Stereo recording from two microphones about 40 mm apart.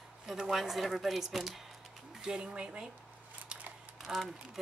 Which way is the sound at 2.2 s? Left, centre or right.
Centre.